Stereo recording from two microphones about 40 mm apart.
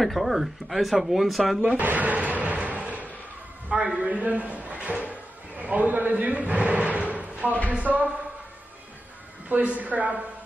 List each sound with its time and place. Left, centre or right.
0.0 s speech: centre
1.8 s a man's voice: right
9.5 s a man's voice: right